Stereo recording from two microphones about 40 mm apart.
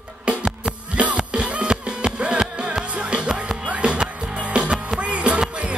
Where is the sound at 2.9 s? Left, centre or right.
Right.